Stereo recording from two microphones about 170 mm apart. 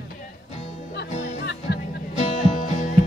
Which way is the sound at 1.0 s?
45° left (ahead or behind).